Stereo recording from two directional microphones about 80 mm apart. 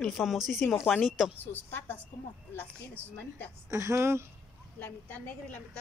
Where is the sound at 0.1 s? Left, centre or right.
Centre.